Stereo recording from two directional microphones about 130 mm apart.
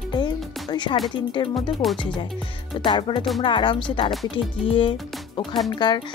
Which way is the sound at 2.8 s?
40° left (ahead or behind).